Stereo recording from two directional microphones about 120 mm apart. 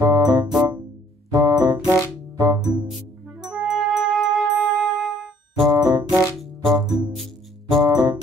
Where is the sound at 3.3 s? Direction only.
5° right (ahead or behind).